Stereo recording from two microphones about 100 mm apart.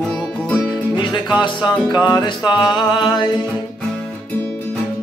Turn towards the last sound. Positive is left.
turn(degrees=50)  # may be behind; listen again after turning